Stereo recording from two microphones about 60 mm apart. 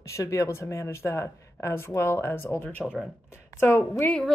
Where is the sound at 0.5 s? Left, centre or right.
Left.